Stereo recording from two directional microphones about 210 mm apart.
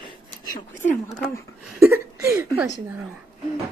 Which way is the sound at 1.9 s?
10° right (ahead or behind).